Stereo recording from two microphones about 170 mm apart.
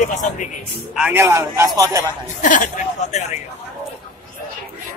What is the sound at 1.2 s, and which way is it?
Speech, 15° right (ahead or behind).